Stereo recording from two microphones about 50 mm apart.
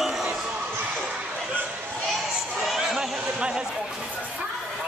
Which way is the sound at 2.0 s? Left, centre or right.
Centre.